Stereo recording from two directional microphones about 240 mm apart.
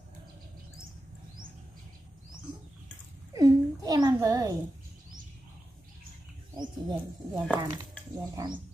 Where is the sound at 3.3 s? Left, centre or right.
Centre.